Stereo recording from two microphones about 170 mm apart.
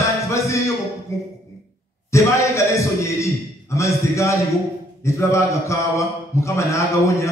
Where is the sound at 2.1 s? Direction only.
15° left (ahead or behind).